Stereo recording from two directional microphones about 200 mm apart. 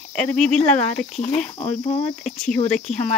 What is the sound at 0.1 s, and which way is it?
Speech, 5° left (ahead or behind).